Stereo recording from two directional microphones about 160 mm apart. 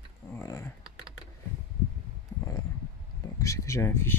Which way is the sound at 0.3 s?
15° left (ahead or behind).